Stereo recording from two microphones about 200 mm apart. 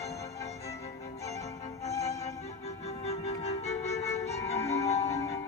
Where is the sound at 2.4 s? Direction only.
30° left (ahead or behind).